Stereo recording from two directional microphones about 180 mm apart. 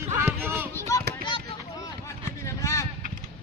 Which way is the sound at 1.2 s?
25° left (ahead or behind).